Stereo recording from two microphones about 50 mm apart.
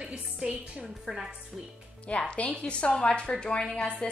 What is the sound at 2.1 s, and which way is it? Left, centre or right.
A woman's voice, left.